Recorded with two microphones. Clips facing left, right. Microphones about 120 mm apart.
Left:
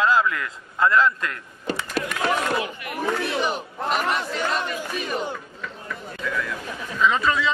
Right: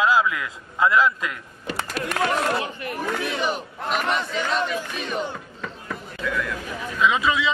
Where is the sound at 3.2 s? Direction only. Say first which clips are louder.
Left 1 dB; centre (ahead or behind).